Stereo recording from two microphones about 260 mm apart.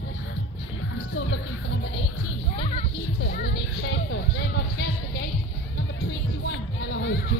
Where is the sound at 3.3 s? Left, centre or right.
Left.